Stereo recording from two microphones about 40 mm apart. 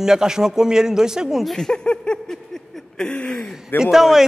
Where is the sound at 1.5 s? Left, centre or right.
Centre.